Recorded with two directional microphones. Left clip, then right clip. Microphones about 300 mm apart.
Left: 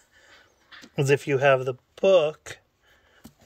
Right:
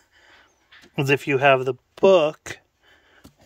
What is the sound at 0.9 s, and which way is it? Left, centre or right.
Speech, centre.